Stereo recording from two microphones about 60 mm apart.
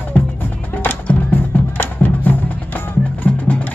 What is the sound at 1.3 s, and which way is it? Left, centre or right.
Music, left.